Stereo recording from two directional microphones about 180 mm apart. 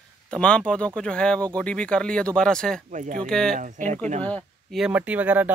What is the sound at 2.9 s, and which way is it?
Speech, 45° right (ahead or behind).